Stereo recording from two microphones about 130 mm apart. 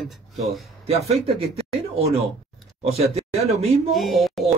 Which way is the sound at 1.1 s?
50° right (ahead or behind).